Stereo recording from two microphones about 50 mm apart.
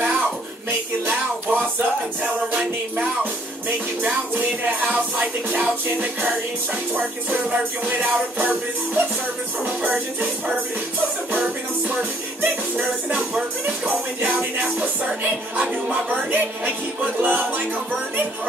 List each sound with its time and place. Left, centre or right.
0.7 s music: right
15.9 s music: right